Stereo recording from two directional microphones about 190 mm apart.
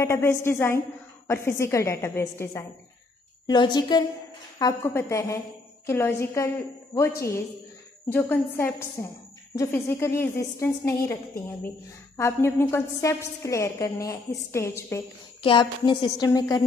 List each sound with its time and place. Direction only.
0.0 s a woman's voice: 15° left (ahead or behind)
12.2 s a woman's voice: 15° left (ahead or behind)
15.4 s a woman's voice: 25° left (ahead or behind)